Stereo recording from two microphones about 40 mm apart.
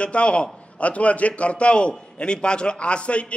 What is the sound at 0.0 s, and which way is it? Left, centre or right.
A man's voice, left.